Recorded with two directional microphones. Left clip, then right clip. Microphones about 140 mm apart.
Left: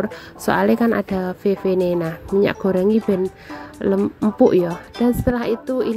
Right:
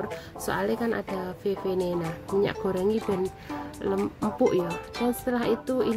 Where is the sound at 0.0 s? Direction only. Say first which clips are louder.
Left 9 dB; 45° left (ahead or behind).